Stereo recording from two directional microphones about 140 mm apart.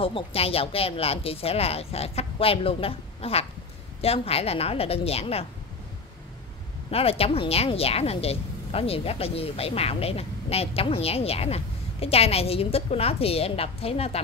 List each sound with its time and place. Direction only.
0.0 s a woman's voice: 40° left (ahead or behind)
6.9 s a woman's voice: 45° left (ahead or behind)